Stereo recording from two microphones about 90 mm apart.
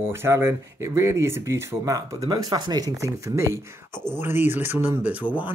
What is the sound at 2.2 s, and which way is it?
Speech, 55° right (ahead or behind).